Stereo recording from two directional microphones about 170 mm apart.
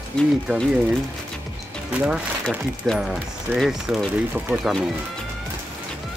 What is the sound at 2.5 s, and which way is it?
Speech, centre (ahead or behind).